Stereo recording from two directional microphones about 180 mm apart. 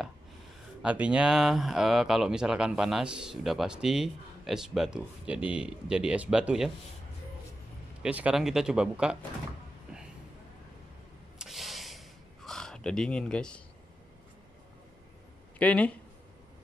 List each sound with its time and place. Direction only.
0.8 s speech: 5° right (ahead or behind)
8.0 s speech: 5° right (ahead or behind)
11.3 s gasp: centre (ahead or behind)
15.6 s speech: 10° left (ahead or behind)